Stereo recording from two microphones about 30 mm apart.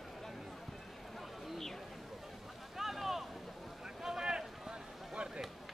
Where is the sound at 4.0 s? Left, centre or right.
Centre.